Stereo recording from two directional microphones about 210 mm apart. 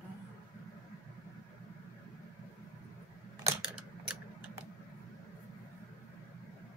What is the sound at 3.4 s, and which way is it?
Typing, 5° right (ahead or behind).